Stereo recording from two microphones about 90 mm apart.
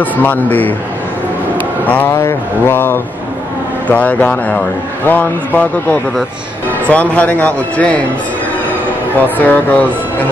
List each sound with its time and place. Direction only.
0.0 s speech: 20° left (ahead or behind)
1.9 s a man's voice: 20° left (ahead or behind)
6.9 s a man's voice: 15° left (ahead or behind)
9.2 s speech: 20° left (ahead or behind)